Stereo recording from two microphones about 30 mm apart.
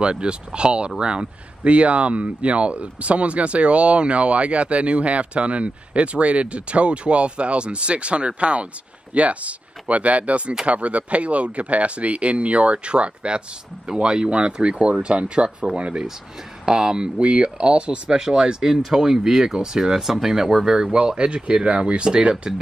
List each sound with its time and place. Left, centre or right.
0.0 s speech: right
1.6 s speech: right
16.6 s speech: right
17.2 s speech: right
18.1 s speech: centre
20.9 s speech: right
21.6 s speech: right
22.5 s speech: centre